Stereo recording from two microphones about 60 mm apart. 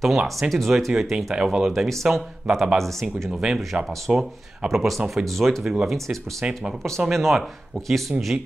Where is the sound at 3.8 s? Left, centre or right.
Centre.